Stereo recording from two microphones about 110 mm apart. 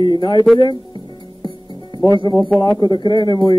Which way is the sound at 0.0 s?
45° left (ahead or behind).